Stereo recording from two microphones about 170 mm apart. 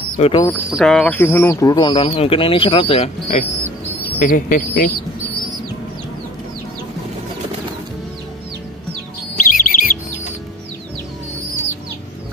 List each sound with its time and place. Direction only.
0.2 s speech: 35° left (ahead or behind)
0.7 s speech: centre (ahead or behind); by 2.0 s 25° left (ahead or behind)
2.0 s speech: 35° left (ahead or behind)
4.2 s speech: 50° left (ahead or behind)
9.4 s bird: 55° left (ahead or behind)